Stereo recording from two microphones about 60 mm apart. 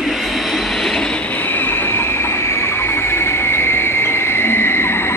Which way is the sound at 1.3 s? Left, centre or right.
Left.